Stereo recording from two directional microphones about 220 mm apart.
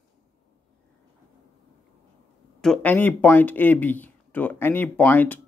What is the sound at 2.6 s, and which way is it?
Speech, 5° left (ahead or behind).